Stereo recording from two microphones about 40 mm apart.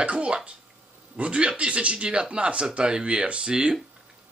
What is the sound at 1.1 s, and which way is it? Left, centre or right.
Speech, right.